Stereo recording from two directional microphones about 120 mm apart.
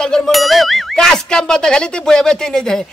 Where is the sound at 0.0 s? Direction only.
5° left (ahead or behind).